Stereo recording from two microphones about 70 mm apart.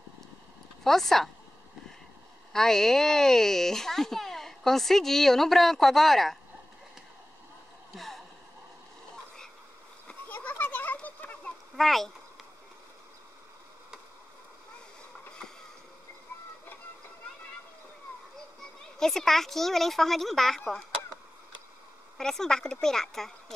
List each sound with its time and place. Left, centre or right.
0.8 s speech: centre
2.5 s speech: centre
7.9 s a sound: centre
10.0 s a sound: left
11.7 s speech: centre
18.9 s speech: centre
22.1 s speech: centre